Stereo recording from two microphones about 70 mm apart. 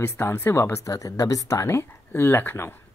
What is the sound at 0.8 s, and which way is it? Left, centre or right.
Speech, left.